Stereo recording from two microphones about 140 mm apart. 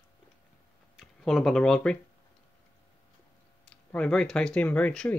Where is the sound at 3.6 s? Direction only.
5° left (ahead or behind).